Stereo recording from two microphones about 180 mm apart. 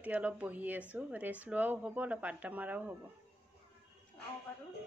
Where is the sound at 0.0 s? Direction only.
10° right (ahead or behind).